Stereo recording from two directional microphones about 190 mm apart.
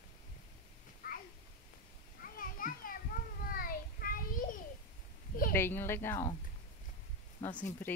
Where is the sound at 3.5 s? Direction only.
50° left (ahead or behind).